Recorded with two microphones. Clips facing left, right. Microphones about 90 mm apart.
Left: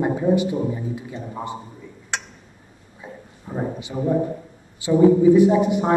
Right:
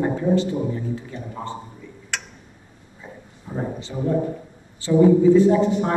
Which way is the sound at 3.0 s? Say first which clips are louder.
Left 2 dB; 15° left (ahead or behind).